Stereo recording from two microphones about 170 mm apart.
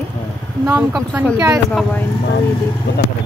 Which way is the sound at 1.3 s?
20° right (ahead or behind).